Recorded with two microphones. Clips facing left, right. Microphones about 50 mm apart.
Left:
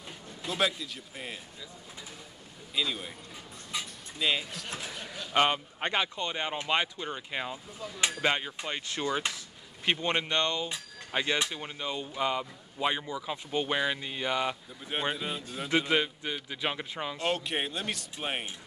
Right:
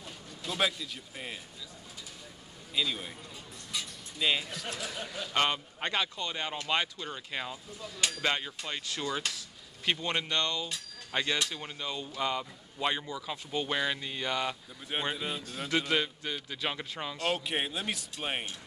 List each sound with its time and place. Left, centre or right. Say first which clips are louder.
0.5 s speech: left 1 dB; centre
2.7 s speech: even; centre
3.7 s a sound: left 2 dB; left
4.2 s speech: even; centre
4.6 s speech: right 1 dB; left
11.1 s speech: left 2 dB; centre
14.9 s speech: left 1 dB; centre
15.7 s speech: left 2 dB; centre
17.3 s speech: even; centre